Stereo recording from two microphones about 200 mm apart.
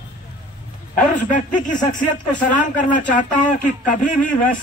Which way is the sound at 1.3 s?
40° left (ahead or behind).